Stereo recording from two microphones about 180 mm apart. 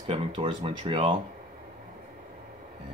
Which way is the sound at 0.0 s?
30° right (ahead or behind).